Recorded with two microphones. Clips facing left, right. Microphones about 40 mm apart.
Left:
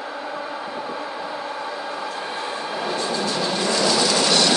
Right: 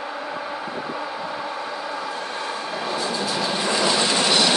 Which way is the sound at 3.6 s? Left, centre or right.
Right.